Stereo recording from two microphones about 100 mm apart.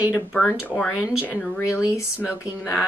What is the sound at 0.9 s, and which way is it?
Speech, 10° right (ahead or behind).